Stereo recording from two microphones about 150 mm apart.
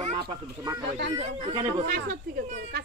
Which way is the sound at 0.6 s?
20° right (ahead or behind).